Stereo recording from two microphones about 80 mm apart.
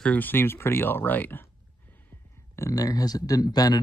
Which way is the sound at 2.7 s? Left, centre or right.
Left.